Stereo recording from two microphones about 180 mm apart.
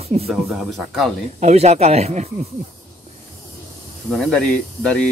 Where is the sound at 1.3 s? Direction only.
40° right (ahead or behind).